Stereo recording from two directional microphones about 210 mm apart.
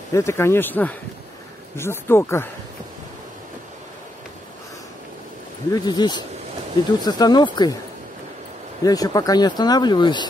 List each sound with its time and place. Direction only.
0.1 s speech: 15° left (ahead or behind)
5.7 s speech: 20° left (ahead or behind)
8.8 s speech: 15° left (ahead or behind)